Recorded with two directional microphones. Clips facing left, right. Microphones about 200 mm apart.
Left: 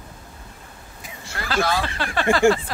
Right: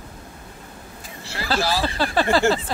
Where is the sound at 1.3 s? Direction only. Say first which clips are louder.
Even; 30° right (ahead or behind).